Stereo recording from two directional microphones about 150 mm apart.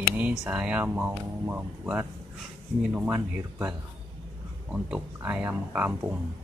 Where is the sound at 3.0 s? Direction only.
15° right (ahead or behind).